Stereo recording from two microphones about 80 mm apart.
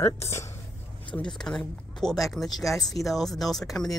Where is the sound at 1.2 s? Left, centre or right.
Centre.